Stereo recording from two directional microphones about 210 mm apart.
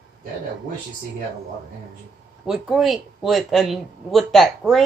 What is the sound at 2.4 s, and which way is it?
Speech, centre (ahead or behind).